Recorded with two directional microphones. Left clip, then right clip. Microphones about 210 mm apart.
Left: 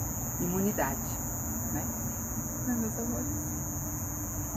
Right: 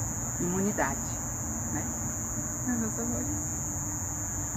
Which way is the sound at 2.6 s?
20° left (ahead or behind).